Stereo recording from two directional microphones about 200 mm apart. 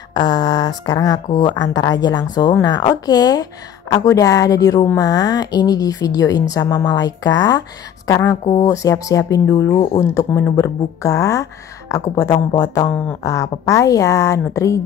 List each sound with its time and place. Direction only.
0.1 s a woman's voice: 20° left (ahead or behind)